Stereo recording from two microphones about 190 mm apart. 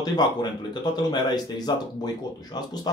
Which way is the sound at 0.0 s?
20° left (ahead or behind).